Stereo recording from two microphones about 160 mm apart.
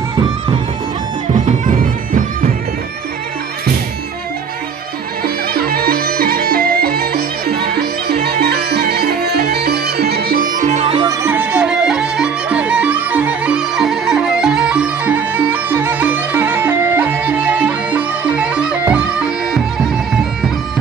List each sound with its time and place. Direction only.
1.4 s music: 60° right (ahead or behind)
5.2 s music: 70° right (ahead or behind); by 10.9 s 55° right (ahead or behind)
10.9 s music: 30° right (ahead or behind)
11.2 s music: 10° right (ahead or behind)